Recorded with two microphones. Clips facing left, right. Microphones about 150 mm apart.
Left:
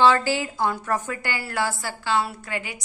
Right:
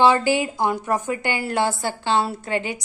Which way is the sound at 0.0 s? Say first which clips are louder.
Right 2 dB; 15° right (ahead or behind).